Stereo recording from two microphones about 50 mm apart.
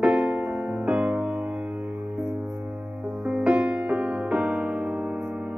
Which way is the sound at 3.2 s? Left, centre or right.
Right.